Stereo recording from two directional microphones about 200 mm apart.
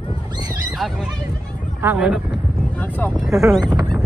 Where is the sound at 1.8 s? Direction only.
5° right (ahead or behind).